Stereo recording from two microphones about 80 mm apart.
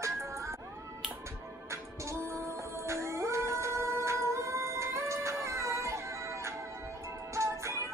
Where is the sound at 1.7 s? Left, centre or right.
Right.